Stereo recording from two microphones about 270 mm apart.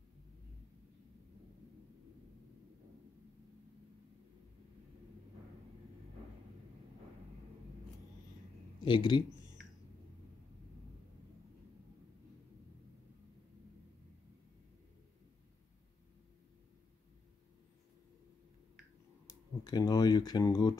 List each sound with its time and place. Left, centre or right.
8.8 s speech: centre
19.2 s speech: centre